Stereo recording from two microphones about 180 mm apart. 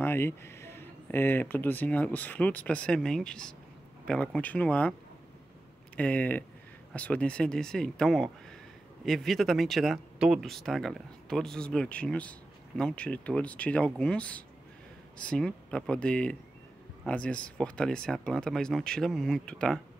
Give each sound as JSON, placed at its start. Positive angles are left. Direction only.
{"t": 0.0, "sound": "speech", "side_deg": 10}
{"t": 5.9, "sound": "speech", "side_deg": 10}